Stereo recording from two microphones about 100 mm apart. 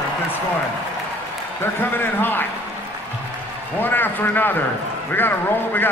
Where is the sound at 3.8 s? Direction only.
20° left (ahead or behind).